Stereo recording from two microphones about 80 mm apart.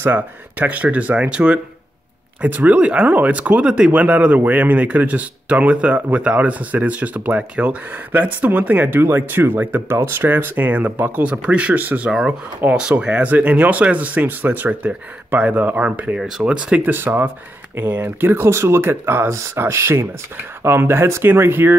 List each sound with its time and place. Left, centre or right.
0.0 s speech: right
12.1 s speech: centre
16.2 s speech: centre
16.9 s speech: right